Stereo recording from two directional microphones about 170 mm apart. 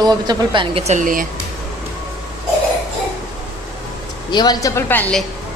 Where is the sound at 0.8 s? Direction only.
45° right (ahead or behind).